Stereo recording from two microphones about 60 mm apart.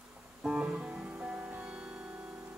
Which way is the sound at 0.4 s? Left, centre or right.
Centre.